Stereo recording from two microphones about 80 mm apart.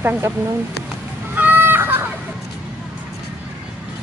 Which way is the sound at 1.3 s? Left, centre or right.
Right.